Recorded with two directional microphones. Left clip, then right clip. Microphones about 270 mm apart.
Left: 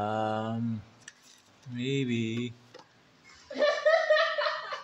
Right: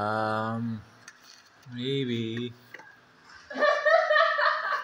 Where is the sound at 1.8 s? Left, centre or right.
Centre.